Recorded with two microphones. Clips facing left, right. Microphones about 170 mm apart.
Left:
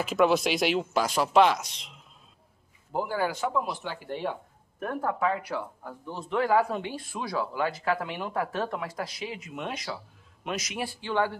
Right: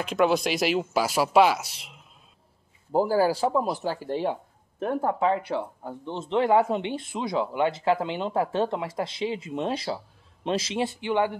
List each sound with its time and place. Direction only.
0.0 s speech: centre (ahead or behind)
2.9 s speech: 35° right (ahead or behind); by 11.3 s 15° right (ahead or behind)